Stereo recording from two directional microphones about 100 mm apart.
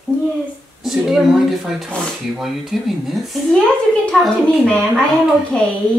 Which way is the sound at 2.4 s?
5° right (ahead or behind).